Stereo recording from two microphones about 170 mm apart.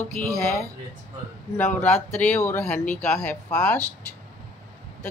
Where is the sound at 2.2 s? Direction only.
15° left (ahead or behind).